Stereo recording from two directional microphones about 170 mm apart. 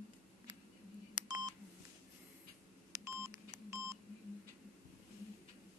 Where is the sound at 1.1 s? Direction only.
25° right (ahead or behind).